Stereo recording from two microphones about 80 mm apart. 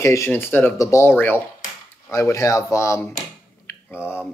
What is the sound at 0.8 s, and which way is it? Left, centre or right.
Speech, left.